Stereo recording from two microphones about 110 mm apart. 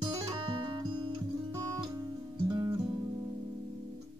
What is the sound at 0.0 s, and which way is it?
Music, 45° right (ahead or behind).